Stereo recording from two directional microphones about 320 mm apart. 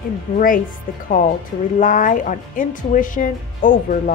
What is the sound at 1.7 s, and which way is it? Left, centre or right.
Speech, left.